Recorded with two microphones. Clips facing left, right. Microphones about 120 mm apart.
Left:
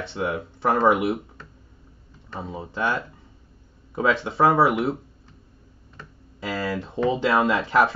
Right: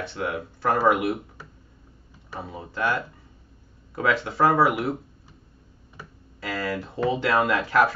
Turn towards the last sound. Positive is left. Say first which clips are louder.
# left 1 dB
turn(degrees=25)  # may be behind; listen again after turning